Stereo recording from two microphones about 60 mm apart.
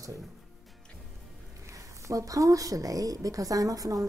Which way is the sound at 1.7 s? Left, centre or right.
Right.